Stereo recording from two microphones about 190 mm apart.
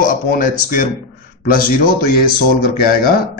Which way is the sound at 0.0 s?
45° left (ahead or behind).